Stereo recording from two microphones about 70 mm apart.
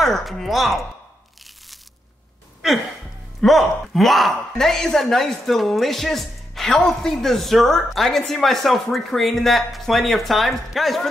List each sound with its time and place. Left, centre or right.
0.0 s a woman's voice: centre
3.3 s a woman's voice: centre